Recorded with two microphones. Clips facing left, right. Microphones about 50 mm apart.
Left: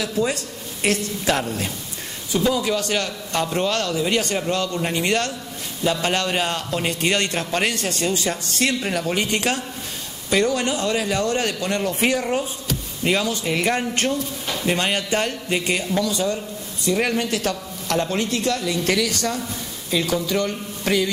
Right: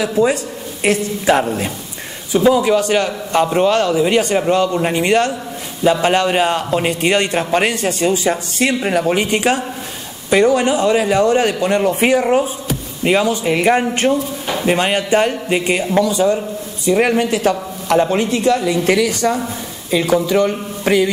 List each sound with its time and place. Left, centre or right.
0.0 s a man's voice: centre